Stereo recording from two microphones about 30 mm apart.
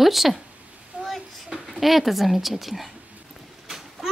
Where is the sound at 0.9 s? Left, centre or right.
Right.